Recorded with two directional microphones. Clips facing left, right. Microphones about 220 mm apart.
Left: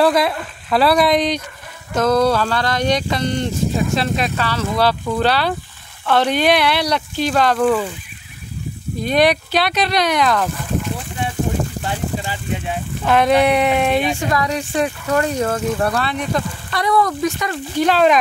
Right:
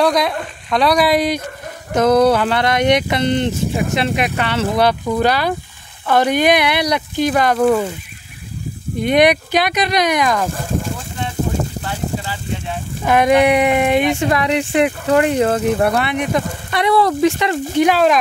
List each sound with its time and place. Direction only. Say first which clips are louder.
0.0 s speech: even; 5° left (ahead or behind)
2.0 s speech: right 3 dB; 20° right (ahead or behind)
9.0 s speech: right 3 dB; 15° right (ahead or behind)
10.5 s speech: right 1 dB; 45° right (ahead or behind)
11.8 s speech: even; 15° left (ahead or behind)
13.0 s speech: right 2 dB; 10° right (ahead or behind)
14.3 s speech: right 3 dB; 25° right (ahead or behind)